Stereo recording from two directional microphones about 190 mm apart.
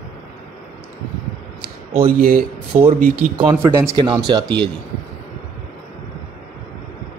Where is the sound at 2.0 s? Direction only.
50° right (ahead or behind).